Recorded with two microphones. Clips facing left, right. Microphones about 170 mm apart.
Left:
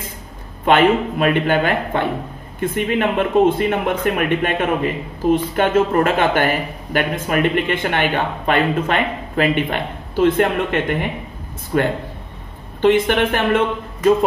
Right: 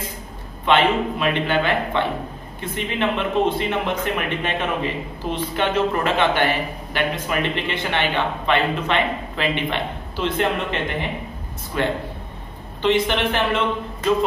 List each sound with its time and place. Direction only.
0.7 s speech: 50° left (ahead or behind)